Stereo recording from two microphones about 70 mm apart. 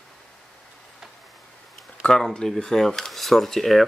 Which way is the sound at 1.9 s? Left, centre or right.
Centre.